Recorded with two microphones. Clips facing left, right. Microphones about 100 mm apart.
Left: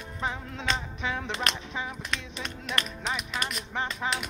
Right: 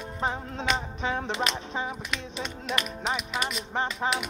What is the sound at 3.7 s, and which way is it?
Music, 35° right (ahead or behind).